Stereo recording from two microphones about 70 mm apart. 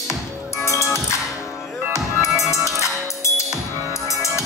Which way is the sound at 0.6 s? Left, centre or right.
Left.